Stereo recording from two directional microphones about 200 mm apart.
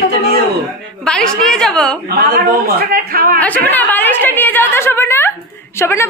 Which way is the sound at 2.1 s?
50° right (ahead or behind).